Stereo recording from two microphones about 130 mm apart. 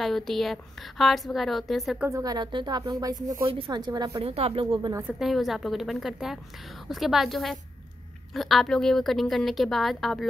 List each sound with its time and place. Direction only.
0.0 s a woman's voice: centre (ahead or behind)
2.0 s a woman's voice: 25° right (ahead or behind)
3.4 s a woman's voice: 40° right (ahead or behind)
4.2 s speech: 50° right (ahead or behind)
5.2 s a woman's voice: centre (ahead or behind)